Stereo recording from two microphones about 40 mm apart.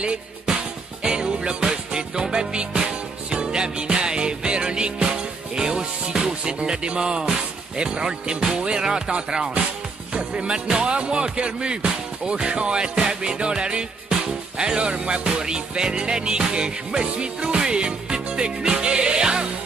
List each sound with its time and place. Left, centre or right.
0.5 s music: centre